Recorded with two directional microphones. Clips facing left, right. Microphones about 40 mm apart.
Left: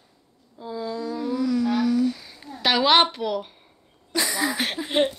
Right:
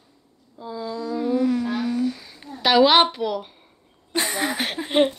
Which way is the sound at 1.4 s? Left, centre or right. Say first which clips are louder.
Even; right.